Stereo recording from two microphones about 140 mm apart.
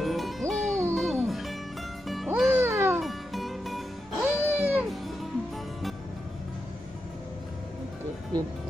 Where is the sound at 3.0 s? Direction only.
Centre (ahead or behind).